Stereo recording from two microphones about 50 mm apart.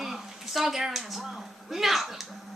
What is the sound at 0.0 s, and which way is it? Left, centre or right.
Speech, centre.